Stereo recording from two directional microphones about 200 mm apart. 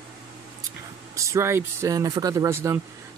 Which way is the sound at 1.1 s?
15° right (ahead or behind).